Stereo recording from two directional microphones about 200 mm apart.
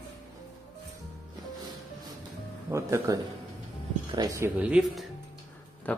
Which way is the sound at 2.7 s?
15° right (ahead or behind).